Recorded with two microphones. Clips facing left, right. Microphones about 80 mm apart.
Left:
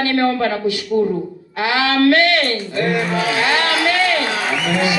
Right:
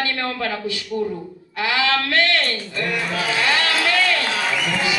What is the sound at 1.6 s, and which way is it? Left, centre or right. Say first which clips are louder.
A man's voice: left 5 dB; left.